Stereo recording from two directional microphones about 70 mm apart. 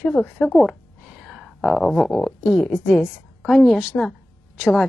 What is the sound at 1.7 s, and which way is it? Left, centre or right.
Speech, centre.